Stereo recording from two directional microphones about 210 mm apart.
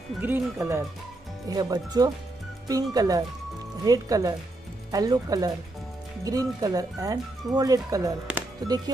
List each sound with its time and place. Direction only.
0.2 s speech: 10° right (ahead or behind)